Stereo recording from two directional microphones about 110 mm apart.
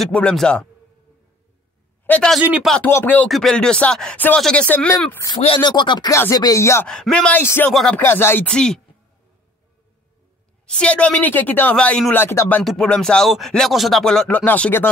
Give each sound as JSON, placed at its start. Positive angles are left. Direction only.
{"t": 0.0, "sound": "speech", "side_deg": 5}
{"t": 2.1, "sound": "a man's voice", "side_deg": 15}
{"t": 3.3, "sound": "speech", "side_deg": 5}
{"t": 5.6, "sound": "speech", "side_deg": 40}
{"t": 6.0, "sound": "chopping", "side_deg": 30}
{"t": 6.9, "sound": "speech", "side_deg": 5}
{"t": 7.4, "sound": "chopping", "side_deg": 20}
{"t": 7.7, "sound": "music", "side_deg": 5}
{"t": 8.0, "sound": "chopping", "side_deg": 20}
{"t": 8.5, "sound": "speech", "side_deg": 5}
{"t": 10.7, "sound": "speech", "side_deg": 10}
{"t": 12.1, "sound": "chopping", "side_deg": 20}
{"t": 12.6, "sound": "speech", "side_deg": 10}